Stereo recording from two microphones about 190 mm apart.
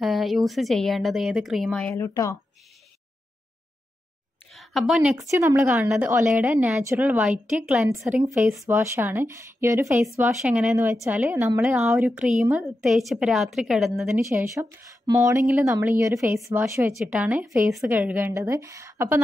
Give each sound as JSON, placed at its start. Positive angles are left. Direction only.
{"t": 0.0, "sound": "speech", "side_deg": 0}
{"t": 2.0, "sound": "speech", "side_deg": 15}
{"t": 4.5, "sound": "a sound", "side_deg": 0}
{"t": 5.3, "sound": "a woman's voice", "side_deg": -15}
{"t": 8.0, "sound": "a woman's voice", "side_deg": -15}